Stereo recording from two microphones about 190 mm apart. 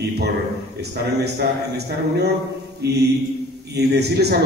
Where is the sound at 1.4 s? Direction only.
60° right (ahead or behind).